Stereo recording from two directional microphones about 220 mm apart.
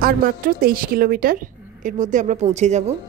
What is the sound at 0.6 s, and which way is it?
A woman's voice, 40° right (ahead or behind).